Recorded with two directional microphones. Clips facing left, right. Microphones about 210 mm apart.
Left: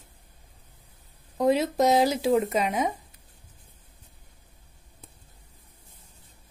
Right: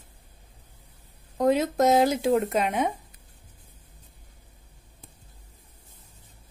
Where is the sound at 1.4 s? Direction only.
Centre (ahead or behind).